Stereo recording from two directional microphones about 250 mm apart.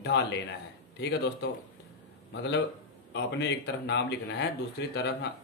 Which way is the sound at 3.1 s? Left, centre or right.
Left.